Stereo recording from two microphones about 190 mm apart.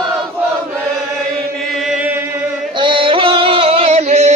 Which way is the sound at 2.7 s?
25° right (ahead or behind).